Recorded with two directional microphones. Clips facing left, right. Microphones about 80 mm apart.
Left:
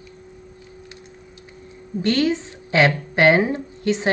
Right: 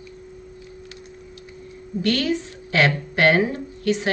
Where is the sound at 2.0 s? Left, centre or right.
Left.